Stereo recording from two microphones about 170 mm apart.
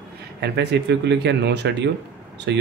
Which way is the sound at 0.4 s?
80° right.